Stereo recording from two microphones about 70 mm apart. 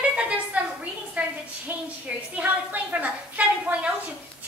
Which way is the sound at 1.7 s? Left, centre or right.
Right.